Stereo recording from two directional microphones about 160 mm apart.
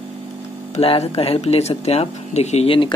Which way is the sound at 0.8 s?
40° left (ahead or behind).